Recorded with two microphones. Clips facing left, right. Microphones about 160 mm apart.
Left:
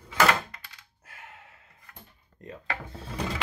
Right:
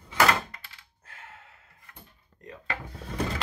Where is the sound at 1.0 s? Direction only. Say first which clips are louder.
Even; 10° left (ahead or behind).